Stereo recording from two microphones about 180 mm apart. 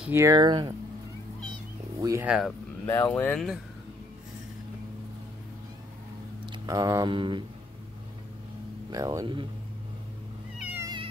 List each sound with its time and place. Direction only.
0.0 s speech: 15° right (ahead or behind)
2.0 s speech: 20° right (ahead or behind)
2.2 s speech: 5° right (ahead or behind)
2.9 s speech: 10° left (ahead or behind)
6.4 s speech: 20° right (ahead or behind)
8.9 s speech: 20° right (ahead or behind)
10.6 s cat: 10° right (ahead or behind)